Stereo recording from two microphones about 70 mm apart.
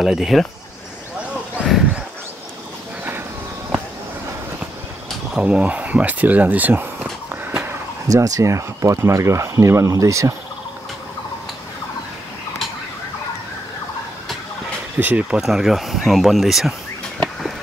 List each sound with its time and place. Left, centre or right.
0.0 s speech: centre
1.6 s a sound: centre
5.3 s speech: centre
8.1 s speech: right
15.0 s speech: right
15.4 s speech: centre